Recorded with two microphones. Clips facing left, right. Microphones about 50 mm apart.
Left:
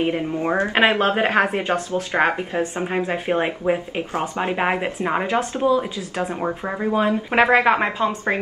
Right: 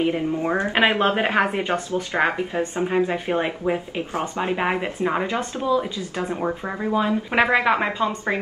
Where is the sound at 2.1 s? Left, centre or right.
Left.